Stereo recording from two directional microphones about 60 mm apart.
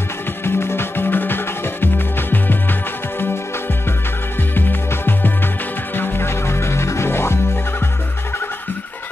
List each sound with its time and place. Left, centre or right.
0.5 s music: left
4.6 s music: left